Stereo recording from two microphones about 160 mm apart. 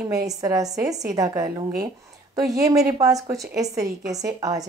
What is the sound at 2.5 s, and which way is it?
Speech, 20° right (ahead or behind).